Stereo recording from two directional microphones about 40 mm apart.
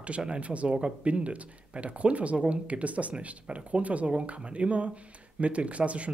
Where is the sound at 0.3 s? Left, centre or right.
Right.